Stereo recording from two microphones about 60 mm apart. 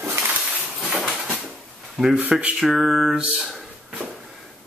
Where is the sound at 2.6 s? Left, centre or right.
Centre.